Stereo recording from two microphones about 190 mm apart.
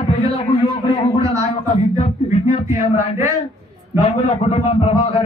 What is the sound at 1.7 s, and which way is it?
Speech, 30° left (ahead or behind).